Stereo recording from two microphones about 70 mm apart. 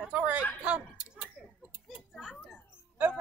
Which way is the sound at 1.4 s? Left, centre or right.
Centre.